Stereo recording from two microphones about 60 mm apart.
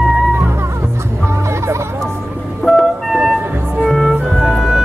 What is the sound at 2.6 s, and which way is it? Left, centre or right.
Music, centre.